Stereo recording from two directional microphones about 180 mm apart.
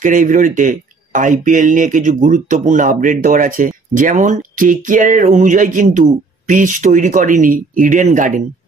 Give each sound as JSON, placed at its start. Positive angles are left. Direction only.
{"t": 0.0, "sound": "speech", "side_deg": -45}